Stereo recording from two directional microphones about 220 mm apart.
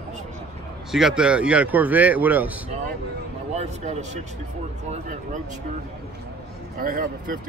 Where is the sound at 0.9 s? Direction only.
Centre (ahead or behind).